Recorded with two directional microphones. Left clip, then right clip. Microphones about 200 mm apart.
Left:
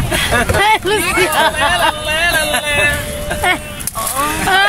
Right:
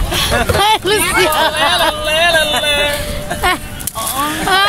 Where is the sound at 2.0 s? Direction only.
50° right (ahead or behind).